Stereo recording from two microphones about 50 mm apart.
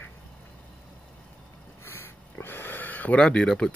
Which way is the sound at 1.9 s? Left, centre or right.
Left.